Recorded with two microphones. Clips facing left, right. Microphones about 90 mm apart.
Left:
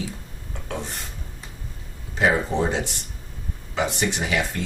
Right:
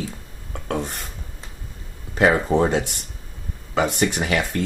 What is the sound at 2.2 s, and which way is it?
Speech, 55° right (ahead or behind).